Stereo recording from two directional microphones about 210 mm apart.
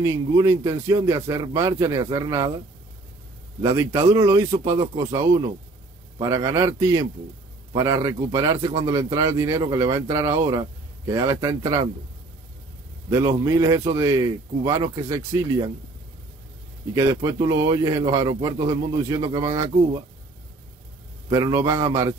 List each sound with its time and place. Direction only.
0.0 s speech: 15° right (ahead or behind)
3.6 s speech: 15° right (ahead or behind)
13.1 s speech: 15° right (ahead or behind)
16.9 s speech: 15° right (ahead or behind)
21.3 s speech: 15° right (ahead or behind)